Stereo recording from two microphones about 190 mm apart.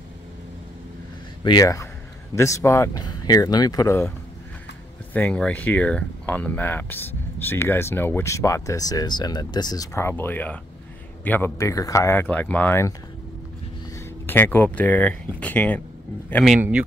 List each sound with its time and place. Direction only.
1.4 s speech: 20° left (ahead or behind)
5.1 s speech: 5° left (ahead or behind)
13.9 s speech: 10° left (ahead or behind)